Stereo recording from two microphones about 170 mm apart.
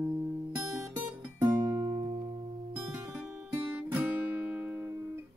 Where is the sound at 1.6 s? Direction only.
20° right (ahead or behind).